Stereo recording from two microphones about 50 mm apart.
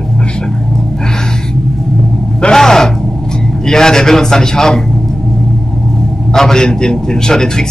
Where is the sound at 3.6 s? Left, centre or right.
Centre.